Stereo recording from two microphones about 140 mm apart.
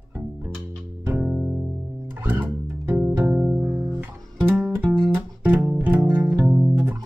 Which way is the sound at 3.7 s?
25° right (ahead or behind).